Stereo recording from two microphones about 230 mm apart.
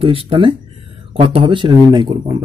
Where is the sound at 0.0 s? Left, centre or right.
Right.